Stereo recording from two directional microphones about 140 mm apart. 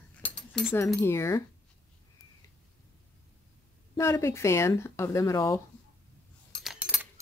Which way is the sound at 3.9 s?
20° left (ahead or behind).